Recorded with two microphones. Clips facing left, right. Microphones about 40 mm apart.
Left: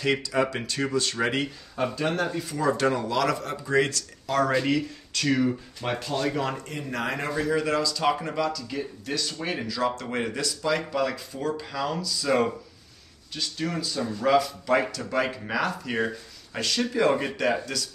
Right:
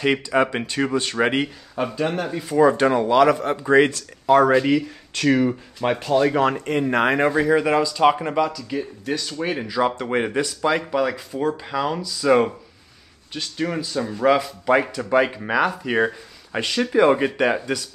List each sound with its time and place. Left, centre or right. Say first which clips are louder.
0.0 s speech: right 5 dB; right
1.4 s speech: right 3 dB; centre
2.7 s speech: right 7 dB; right
6.3 s speech: right 10 dB; right
7.2 s speech: right 7 dB; right